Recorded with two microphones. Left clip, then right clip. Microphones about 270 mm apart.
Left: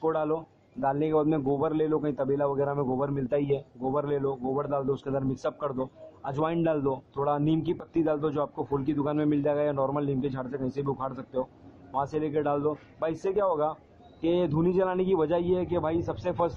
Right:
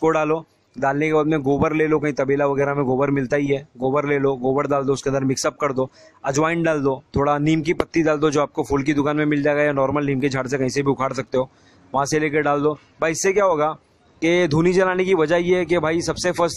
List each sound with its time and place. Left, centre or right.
0.0 s speech: right
0.3 s speech: right